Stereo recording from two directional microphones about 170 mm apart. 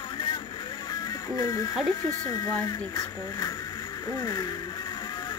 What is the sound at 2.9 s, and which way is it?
Vehicle, 20° left (ahead or behind).